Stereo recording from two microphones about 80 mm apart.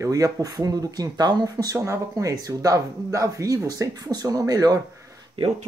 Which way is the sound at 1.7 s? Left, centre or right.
Right.